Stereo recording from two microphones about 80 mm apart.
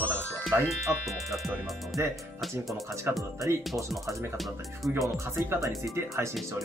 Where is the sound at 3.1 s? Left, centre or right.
Right.